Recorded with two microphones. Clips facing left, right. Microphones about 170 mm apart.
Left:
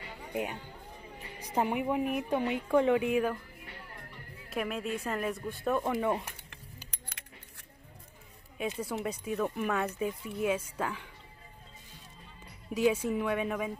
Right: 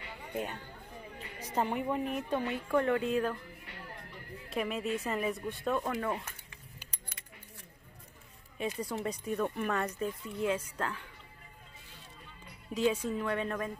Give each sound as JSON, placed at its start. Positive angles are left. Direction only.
{"t": 0.3, "sound": "a woman's voice", "side_deg": 10}
{"t": 4.5, "sound": "speech", "side_deg": 0}
{"t": 6.9, "sound": "keys jangling", "side_deg": 80}
{"t": 8.5, "sound": "speech", "side_deg": 0}
{"t": 12.7, "sound": "a woman's voice", "side_deg": 10}